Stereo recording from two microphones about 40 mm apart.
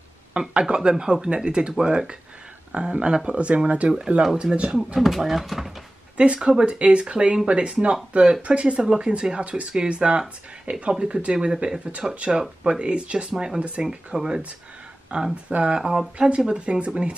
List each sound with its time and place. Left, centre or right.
0.3 s speech: right
4.9 s speech: centre
6.1 s speech: right
12.3 s speech: right
13.3 s speech: centre
13.6 s speech: right
13.8 s speech: centre